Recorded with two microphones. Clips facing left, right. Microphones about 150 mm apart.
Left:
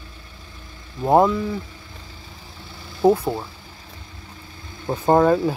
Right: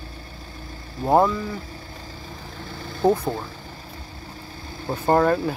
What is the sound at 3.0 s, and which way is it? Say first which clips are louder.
Speech: left 3 dB; 10° left (ahead or behind).